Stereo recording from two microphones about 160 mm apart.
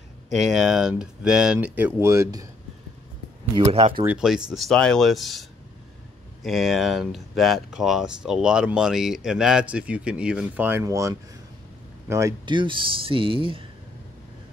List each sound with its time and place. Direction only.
0.3 s speech: centre (ahead or behind); by 2.4 s 20° right (ahead or behind)
3.5 s speech: 35° right (ahead or behind)
4.0 s speech: 5° right (ahead or behind); by 13.7 s 35° right (ahead or behind)